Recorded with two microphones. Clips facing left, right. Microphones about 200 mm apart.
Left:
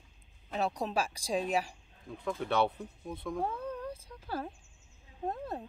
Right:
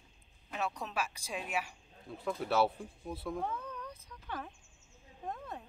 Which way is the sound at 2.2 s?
5° right (ahead or behind).